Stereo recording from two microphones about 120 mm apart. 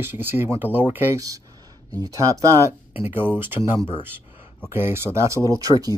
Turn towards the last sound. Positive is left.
turn(degrees=-30)  # may be behind; listen again after turning